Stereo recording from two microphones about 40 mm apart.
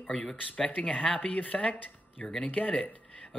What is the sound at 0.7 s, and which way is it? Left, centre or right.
Speech, left.